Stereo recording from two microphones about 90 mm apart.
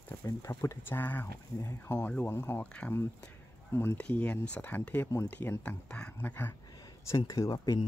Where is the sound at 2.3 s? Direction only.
30° left (ahead or behind).